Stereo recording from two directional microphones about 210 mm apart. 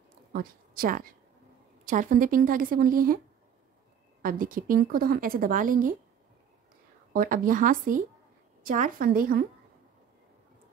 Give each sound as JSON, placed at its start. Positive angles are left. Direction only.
{"t": 0.3, "sound": "a woman's voice", "side_deg": -45}
{"t": 4.2, "sound": "a woman's voice", "side_deg": -40}
{"t": 7.1, "sound": "a woman's voice", "side_deg": -45}